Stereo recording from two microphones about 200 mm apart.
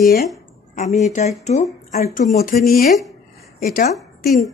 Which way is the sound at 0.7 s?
35° left (ahead or behind).